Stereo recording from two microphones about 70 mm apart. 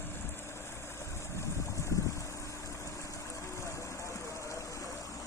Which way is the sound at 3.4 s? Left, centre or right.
Left.